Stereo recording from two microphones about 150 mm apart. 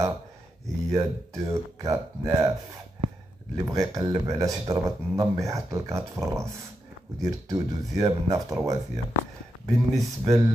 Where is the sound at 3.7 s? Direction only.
25° right (ahead or behind).